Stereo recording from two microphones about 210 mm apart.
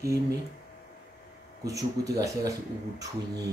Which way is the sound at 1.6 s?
15° right (ahead or behind).